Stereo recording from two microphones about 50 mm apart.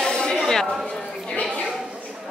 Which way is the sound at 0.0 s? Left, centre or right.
Centre.